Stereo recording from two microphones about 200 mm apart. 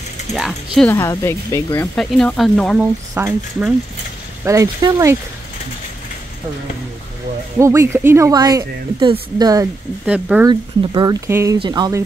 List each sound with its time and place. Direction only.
0.3 s speech: centre (ahead or behind)
0.9 s speech: 15° left (ahead or behind)
2.0 s speech: 5° left (ahead or behind)
2.8 s speech: 10° right (ahead or behind)
7.5 s speech: 15° right (ahead or behind)
10.0 s speech: 5° right (ahead or behind)
10.5 s speech: 20° right (ahead or behind)